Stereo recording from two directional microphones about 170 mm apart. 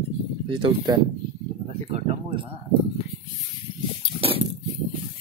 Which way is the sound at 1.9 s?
40° right (ahead or behind).